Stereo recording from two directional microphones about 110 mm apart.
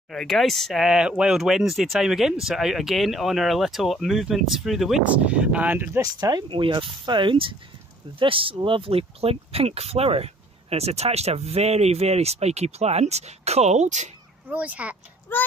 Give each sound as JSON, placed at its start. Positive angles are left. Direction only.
{"t": 0.1, "sound": "speech", "side_deg": 0}
{"t": 5.9, "sound": "speech", "side_deg": -35}
{"t": 14.5, "sound": "speech", "side_deg": -15}
{"t": 15.3, "sound": "a child's voice", "side_deg": 20}